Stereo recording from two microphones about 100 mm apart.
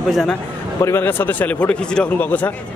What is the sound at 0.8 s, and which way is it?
A man's voice, 25° left (ahead or behind).